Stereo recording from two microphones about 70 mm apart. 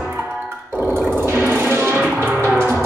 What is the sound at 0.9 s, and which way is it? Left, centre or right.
Music, right.